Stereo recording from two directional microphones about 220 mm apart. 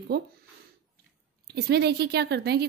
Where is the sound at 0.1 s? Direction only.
45° right (ahead or behind).